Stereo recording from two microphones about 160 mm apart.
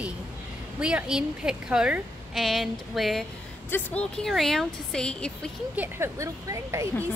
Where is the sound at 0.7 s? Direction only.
5° right (ahead or behind).